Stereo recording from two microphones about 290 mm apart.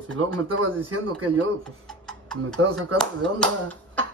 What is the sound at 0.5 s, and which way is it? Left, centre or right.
Speech, right.